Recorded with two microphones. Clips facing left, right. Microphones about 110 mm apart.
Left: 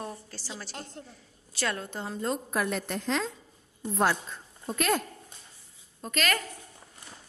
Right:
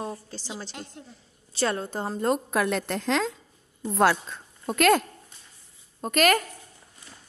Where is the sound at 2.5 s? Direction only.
90° right.